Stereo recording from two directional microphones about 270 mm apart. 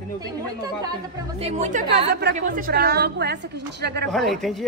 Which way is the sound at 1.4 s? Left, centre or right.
Right.